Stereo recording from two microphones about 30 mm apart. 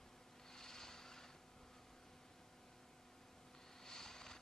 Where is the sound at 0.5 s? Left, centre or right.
Centre.